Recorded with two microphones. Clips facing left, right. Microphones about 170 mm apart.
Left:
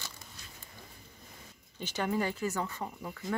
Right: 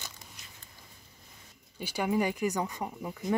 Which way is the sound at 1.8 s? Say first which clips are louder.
Right 3 dB; 10° right (ahead or behind).